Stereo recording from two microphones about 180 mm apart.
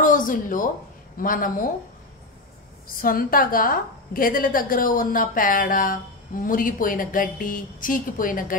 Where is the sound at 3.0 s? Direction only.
55° left (ahead or behind).